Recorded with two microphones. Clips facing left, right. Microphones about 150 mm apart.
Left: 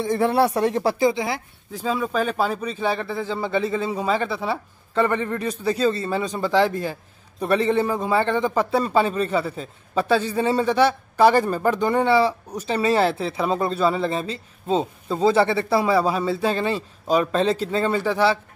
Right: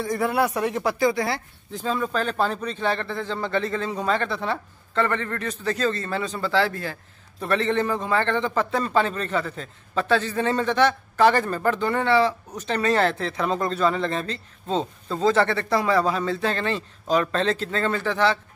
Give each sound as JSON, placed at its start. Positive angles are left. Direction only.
{"t": 0.0, "sound": "speech", "side_deg": 30}